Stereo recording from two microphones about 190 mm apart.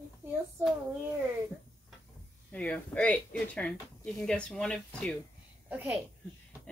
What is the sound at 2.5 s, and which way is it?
Speech, 5° left (ahead or behind).